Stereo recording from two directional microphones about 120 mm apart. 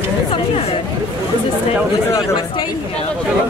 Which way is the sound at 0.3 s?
55° left (ahead or behind).